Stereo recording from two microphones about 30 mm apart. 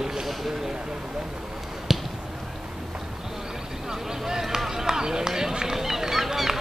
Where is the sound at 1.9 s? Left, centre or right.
Centre.